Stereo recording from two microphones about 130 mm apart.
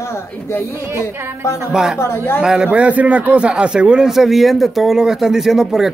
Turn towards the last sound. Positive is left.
turn(degrees=0)  # may be behind; listen again after turning